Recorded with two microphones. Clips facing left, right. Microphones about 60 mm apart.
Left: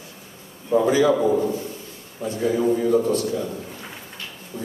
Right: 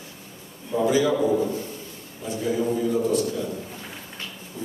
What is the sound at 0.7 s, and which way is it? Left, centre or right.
Speech, left.